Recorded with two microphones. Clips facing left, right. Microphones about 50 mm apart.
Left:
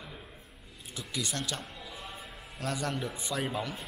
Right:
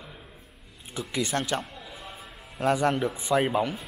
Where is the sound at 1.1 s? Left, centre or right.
Right.